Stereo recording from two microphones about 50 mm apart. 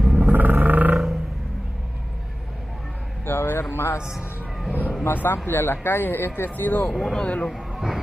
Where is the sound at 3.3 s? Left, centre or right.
Left.